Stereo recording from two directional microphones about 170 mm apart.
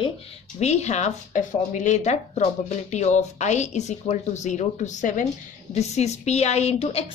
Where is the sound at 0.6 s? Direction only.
40° left (ahead or behind).